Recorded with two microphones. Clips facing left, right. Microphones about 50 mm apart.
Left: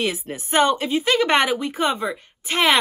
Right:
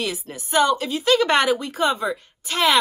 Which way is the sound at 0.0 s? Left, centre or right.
Left.